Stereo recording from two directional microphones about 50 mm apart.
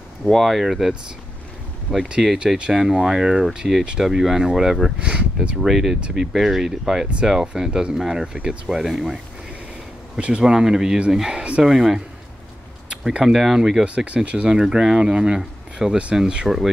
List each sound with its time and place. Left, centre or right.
0.3 s speech: centre
2.0 s speech: centre
2.7 s speech: centre
5.6 s speech: centre
10.1 s speech: centre
13.0 s speech: centre
13.8 s speech: right
14.5 s speech: centre
16.4 s speech: centre